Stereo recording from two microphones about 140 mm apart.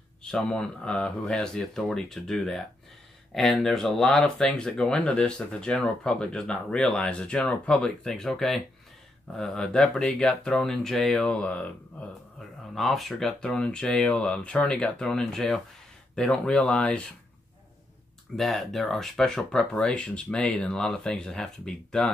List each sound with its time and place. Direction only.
0.2 s speech: 5° left (ahead or behind)
12.7 s speech: centre (ahead or behind)
18.3 s speech: centre (ahead or behind)